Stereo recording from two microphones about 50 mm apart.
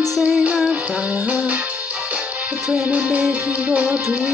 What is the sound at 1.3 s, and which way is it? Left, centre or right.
Music, right.